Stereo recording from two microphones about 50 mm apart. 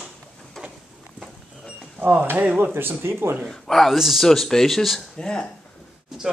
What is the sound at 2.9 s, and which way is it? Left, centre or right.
Speech, right.